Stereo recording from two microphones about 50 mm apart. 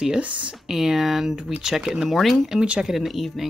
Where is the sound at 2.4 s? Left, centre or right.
Right.